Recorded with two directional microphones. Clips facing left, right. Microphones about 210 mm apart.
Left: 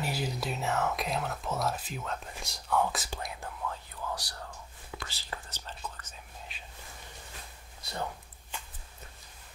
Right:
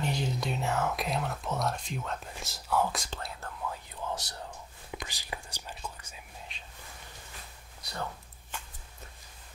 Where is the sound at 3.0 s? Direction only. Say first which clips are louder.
Left 1 dB; 15° left (ahead or behind).